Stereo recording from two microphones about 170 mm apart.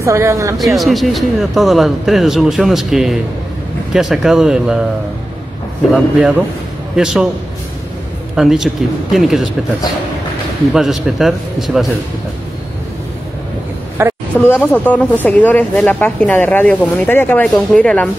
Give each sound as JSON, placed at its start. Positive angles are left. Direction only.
{"t": 0.0, "sound": "speech", "side_deg": -15}
{"t": 0.6, "sound": "a man's voice", "side_deg": 0}
{"t": 5.9, "sound": "a man's voice", "side_deg": -5}
{"t": 8.4, "sound": "a man's voice", "side_deg": 0}
{"t": 10.7, "sound": "a man's voice", "side_deg": -5}
{"t": 14.0, "sound": "a woman's voice", "side_deg": -15}
{"t": 14.4, "sound": "speech", "side_deg": 10}